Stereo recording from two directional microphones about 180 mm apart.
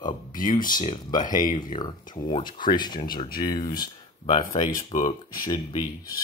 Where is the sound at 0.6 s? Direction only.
50° left (ahead or behind).